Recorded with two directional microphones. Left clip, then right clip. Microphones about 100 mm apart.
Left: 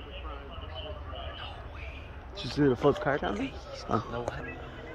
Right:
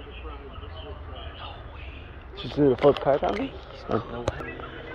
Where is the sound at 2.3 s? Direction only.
35° left (ahead or behind).